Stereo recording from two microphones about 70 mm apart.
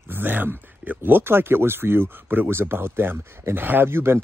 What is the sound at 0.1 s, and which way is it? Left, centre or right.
Speech, right.